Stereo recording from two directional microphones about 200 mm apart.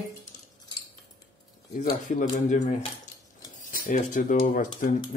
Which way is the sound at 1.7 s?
40° left (ahead or behind).